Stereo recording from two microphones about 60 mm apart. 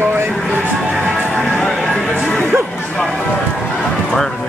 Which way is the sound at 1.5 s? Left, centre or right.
Centre.